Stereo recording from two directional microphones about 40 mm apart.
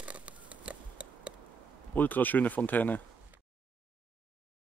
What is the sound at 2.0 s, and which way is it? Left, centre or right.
Speech, left.